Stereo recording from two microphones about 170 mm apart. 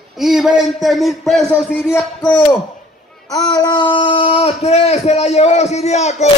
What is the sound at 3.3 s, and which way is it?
A man's voice, 25° left (ahead or behind).